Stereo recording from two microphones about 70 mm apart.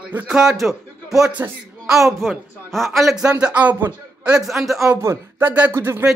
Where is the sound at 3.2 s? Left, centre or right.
Right.